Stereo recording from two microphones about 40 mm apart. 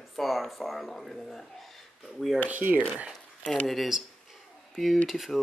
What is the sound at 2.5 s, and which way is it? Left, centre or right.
Speech, right.